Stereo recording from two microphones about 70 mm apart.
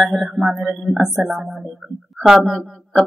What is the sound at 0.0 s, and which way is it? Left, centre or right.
Speech, centre.